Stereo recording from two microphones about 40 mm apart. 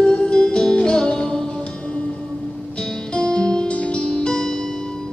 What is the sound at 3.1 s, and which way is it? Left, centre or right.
Music, left.